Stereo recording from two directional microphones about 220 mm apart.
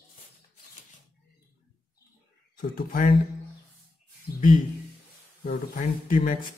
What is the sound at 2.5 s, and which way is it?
Speech, 40° left (ahead or behind).